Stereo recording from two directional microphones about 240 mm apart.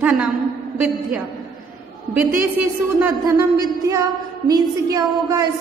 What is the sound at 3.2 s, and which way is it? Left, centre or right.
A woman's voice, centre.